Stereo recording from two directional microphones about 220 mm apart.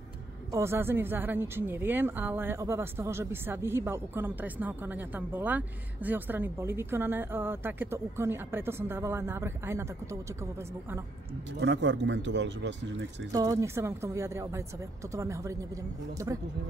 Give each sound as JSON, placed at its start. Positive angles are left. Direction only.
{"t": 0.5, "sound": "a woman's voice", "side_deg": -10}
{"t": 11.6, "sound": "speech", "side_deg": -55}
{"t": 13.3, "sound": "a woman's voice", "side_deg": -15}